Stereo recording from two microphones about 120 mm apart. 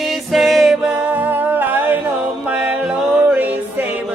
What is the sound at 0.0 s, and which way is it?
Music, centre (ahead or behind).